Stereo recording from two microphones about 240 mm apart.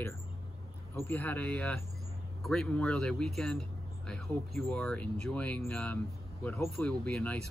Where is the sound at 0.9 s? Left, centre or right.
Centre.